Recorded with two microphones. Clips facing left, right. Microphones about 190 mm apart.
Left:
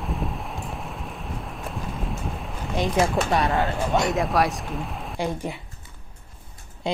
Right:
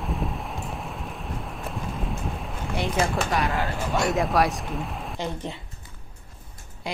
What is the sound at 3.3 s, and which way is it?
Speech, 30° left (ahead or behind).